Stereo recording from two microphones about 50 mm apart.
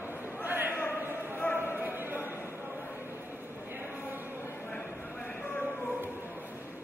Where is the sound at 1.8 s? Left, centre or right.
Right.